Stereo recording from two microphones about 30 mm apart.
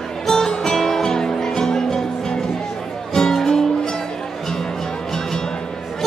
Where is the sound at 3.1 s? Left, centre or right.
Centre.